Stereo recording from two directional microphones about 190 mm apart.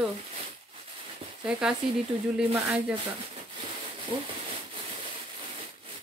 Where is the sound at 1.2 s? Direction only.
30° right (ahead or behind).